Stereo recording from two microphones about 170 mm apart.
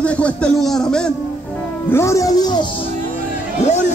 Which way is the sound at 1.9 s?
15° left (ahead or behind).